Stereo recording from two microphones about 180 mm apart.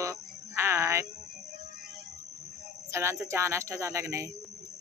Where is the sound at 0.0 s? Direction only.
15° right (ahead or behind).